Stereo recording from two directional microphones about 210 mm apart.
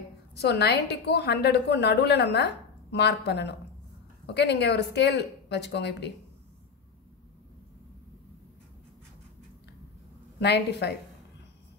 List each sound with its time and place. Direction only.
0.3 s a woman's voice: 50° left (ahead or behind)
10.4 s a woman's voice: 55° left (ahead or behind)